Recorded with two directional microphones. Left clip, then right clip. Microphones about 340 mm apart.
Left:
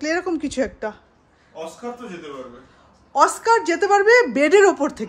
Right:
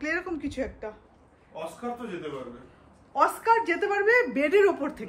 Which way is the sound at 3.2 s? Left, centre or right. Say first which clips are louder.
Left 6 dB; centre.